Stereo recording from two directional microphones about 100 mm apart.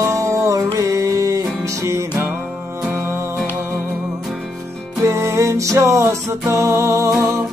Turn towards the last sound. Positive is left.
turn(degrees=-30)  # may be behind; listen again after turning